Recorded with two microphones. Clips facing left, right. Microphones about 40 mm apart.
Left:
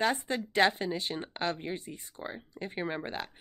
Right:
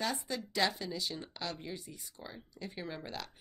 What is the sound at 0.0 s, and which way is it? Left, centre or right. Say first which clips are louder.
A woman's voice: left 7 dB; left.